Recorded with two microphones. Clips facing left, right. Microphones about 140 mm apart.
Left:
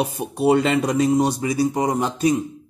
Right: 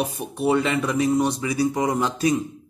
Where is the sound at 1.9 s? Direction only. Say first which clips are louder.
Left 2 dB; 20° left (ahead or behind).